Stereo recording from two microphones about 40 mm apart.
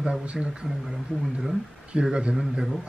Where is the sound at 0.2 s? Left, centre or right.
Right.